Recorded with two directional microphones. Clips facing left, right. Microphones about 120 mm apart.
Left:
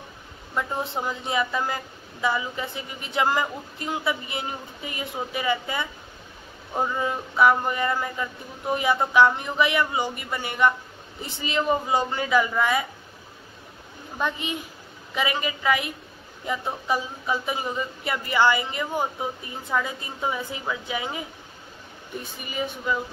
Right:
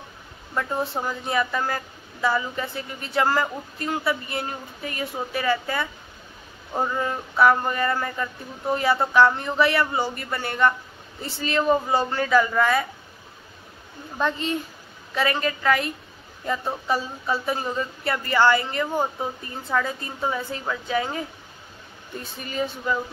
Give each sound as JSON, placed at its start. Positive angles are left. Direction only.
{"t": 0.6, "sound": "speech", "side_deg": 20}
{"t": 14.2, "sound": "speech", "side_deg": 15}